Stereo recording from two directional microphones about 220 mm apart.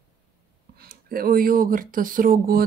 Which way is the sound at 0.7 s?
40° right (ahead or behind).